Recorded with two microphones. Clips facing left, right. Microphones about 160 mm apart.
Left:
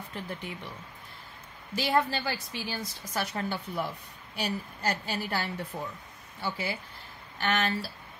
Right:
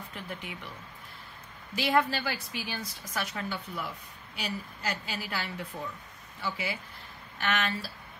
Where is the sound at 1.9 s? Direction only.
35° left (ahead or behind).